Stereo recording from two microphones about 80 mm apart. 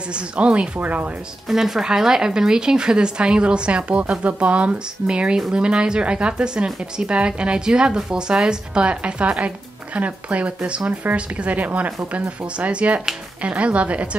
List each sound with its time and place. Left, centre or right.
0.1 s speech: centre
1.5 s speech: centre